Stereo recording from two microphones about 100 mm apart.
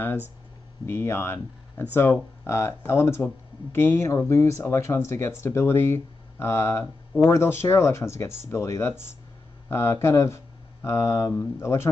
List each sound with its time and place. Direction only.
0.8 s speech: 25° left (ahead or behind)